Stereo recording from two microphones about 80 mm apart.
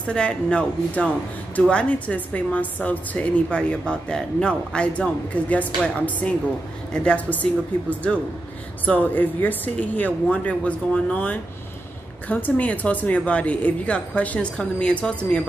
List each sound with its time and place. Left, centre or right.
0.0 s speech: centre